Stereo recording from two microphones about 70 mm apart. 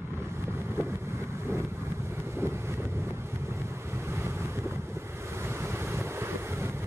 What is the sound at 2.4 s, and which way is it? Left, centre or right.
Wind noise, right.